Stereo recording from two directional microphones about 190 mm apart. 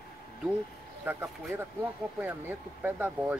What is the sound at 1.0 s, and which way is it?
Speech, 10° right (ahead or behind).